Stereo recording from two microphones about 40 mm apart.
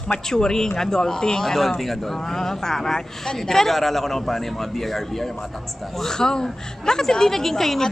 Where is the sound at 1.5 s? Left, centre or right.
Centre.